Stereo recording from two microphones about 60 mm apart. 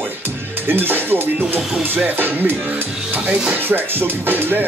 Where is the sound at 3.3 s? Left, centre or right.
Right.